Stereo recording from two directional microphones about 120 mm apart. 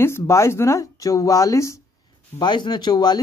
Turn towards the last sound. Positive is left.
turn(degrees=35)  # may be behind; listen again after turning